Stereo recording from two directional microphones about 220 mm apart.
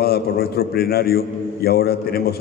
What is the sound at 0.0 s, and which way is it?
A man's voice, 45° left (ahead or behind).